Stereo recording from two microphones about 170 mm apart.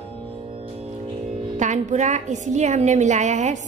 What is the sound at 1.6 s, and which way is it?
A woman's voice, 45° right (ahead or behind).